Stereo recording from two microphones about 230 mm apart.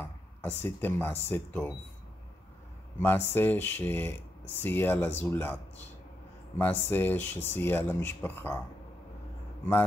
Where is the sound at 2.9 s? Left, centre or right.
Centre.